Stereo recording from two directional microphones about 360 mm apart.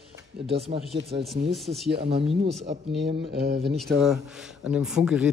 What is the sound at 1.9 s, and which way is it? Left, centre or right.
Speech, right.